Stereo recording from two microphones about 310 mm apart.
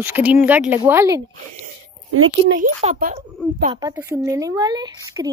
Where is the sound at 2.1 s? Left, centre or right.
Right.